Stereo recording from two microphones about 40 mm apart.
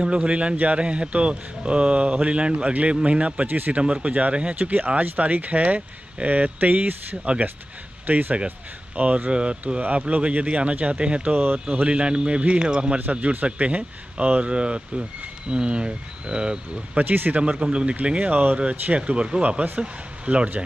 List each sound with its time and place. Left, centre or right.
0.0 s speech: right
3.4 s speech: right
3.7 s speech: right
4.6 s speech: right
8.1 s speech: right
8.5 s speech: right
11.3 s speech: right
12.0 s speech: right
16.9 s speech: right
17.3 s speech: right
18.6 s speech: right